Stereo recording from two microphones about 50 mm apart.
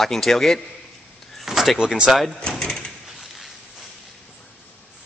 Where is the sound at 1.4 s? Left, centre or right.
Centre.